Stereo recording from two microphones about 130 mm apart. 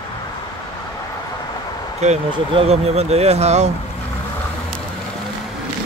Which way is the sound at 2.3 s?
50° right (ahead or behind).